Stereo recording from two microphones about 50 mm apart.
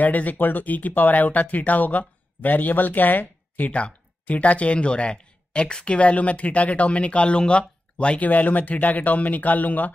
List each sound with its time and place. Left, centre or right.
0.0 s speech: left
3.7 s speech: left
8.3 s speech: left